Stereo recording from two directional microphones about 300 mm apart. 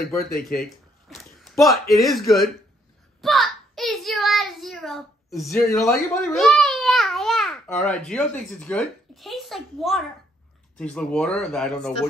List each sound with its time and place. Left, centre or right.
0.3 s speech: left
0.7 s speech: centre
3.2 s a sound: centre
5.8 s a child's voice: centre